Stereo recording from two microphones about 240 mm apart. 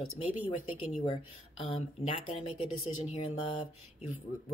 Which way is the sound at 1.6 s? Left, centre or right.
Left.